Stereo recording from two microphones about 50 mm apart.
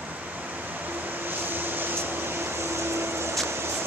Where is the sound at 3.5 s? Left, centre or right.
Right.